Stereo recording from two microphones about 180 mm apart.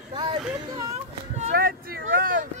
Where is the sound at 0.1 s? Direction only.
30° right (ahead or behind).